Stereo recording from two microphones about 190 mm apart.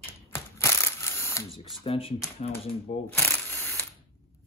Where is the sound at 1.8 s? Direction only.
30° left (ahead or behind).